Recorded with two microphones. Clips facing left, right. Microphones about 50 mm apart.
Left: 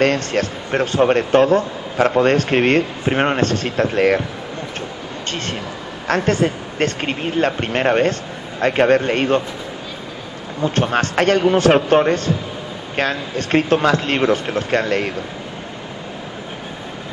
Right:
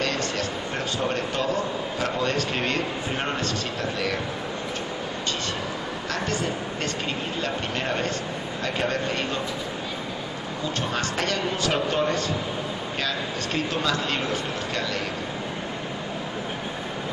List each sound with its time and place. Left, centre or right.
0.0 s speech: left
6.0 s speech: left
10.6 s speech: left